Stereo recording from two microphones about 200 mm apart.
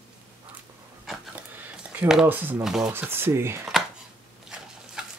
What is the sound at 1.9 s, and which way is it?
Speech, 5° right (ahead or behind).